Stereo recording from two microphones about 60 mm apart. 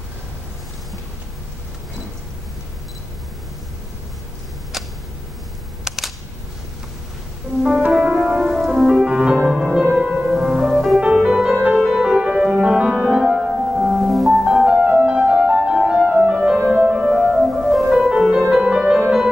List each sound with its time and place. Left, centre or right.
4.7 s a sound: centre
5.9 s camera: centre
7.9 s music: centre
11.5 s music: right
11.8 s music: centre
14.9 s music: centre
16.9 s music: centre